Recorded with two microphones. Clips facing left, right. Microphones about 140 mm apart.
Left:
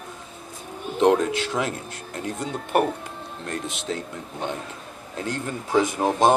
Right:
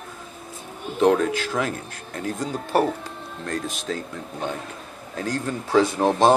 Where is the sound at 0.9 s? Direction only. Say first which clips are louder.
Even; 20° left (ahead or behind).